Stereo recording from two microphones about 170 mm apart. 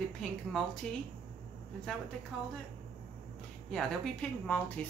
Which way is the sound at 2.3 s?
Centre (ahead or behind).